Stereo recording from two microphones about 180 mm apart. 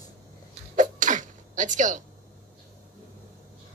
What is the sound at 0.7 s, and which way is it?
Sneeze, 45° right (ahead or behind).